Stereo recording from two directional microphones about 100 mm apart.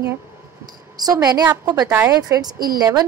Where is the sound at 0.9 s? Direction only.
40° right (ahead or behind).